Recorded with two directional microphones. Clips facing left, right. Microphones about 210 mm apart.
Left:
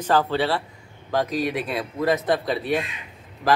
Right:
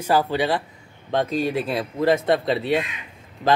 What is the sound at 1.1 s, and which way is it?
Speech, 25° right (ahead or behind).